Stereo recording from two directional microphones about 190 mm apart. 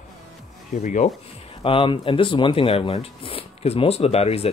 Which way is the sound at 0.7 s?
40° left (ahead or behind).